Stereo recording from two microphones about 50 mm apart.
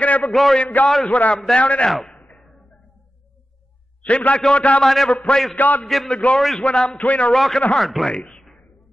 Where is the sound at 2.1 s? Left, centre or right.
Left.